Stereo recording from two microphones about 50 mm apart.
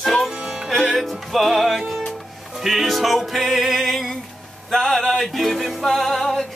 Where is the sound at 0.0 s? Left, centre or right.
Centre.